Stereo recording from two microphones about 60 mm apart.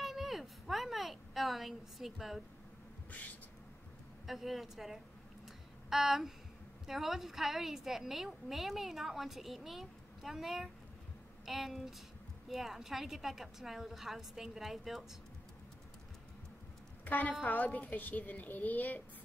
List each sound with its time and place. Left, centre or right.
0.0 s a sound: centre
4.3 s a woman's voice: centre
17.0 s a woman's voice: left